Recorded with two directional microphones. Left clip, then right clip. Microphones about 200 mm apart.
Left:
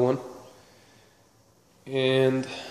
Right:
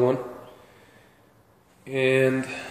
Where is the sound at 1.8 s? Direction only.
15° left (ahead or behind).